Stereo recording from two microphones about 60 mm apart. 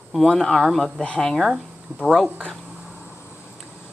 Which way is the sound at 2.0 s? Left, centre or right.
Centre.